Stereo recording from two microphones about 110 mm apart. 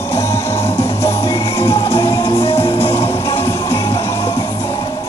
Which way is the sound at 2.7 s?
55° left (ahead or behind).